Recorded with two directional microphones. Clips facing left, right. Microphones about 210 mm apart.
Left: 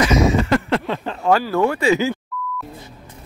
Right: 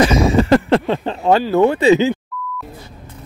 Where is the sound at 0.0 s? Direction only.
30° right (ahead or behind).